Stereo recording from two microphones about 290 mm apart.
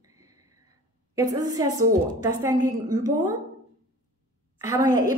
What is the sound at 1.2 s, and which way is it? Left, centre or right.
A woman's voice, centre.